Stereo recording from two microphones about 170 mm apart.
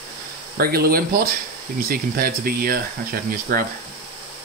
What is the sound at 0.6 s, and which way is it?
Speech, 60° right (ahead or behind).